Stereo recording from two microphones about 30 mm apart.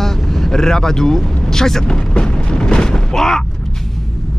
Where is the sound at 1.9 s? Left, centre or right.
Left.